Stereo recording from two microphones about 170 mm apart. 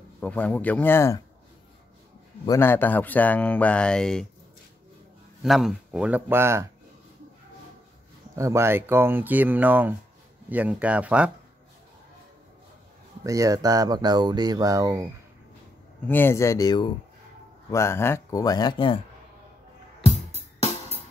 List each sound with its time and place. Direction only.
0.2 s speech: 10° left (ahead or behind)
2.4 s speech: 15° left (ahead or behind)
5.4 s speech: centre (ahead or behind)
8.4 s speech: 15° right (ahead or behind)
13.2 s speech: 20° right (ahead or behind)
16.1 s speech: 15° left (ahead or behind)